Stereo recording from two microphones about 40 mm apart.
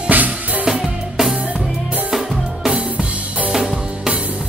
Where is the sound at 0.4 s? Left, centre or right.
Right.